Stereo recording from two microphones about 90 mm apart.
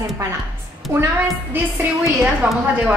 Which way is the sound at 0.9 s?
25° right (ahead or behind).